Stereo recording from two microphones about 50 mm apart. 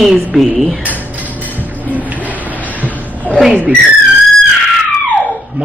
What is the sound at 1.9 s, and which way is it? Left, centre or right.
Printer, right.